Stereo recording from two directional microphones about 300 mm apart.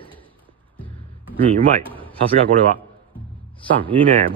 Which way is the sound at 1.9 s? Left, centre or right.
Centre.